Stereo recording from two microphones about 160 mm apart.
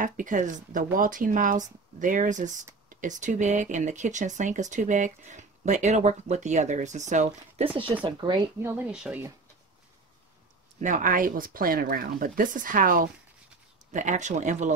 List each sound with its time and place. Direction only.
0.0 s speech: 55° right (ahead or behind); by 8.4 s 30° right (ahead or behind)
8.5 s speech: 15° right (ahead or behind)
10.8 s speech: 55° right (ahead or behind)
13.9 s speech: 50° right (ahead or behind)